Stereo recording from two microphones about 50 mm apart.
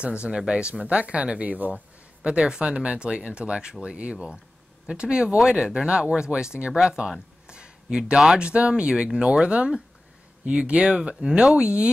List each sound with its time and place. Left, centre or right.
0.0 s speech: right
2.2 s speech: centre